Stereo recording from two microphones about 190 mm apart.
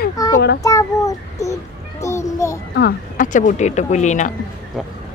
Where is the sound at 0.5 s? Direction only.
20° left (ahead or behind).